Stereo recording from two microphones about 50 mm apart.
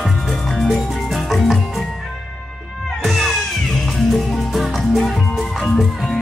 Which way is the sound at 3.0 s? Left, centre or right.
Centre.